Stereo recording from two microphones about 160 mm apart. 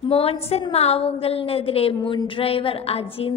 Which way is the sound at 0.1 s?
40° left (ahead or behind).